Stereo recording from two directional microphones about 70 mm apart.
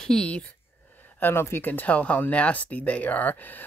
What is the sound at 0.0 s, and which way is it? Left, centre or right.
Speech, centre.